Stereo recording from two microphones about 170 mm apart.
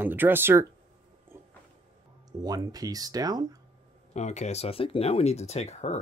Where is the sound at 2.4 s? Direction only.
20° right (ahead or behind).